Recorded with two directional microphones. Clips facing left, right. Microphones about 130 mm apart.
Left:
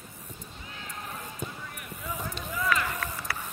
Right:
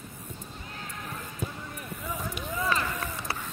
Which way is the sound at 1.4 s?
5° right (ahead or behind).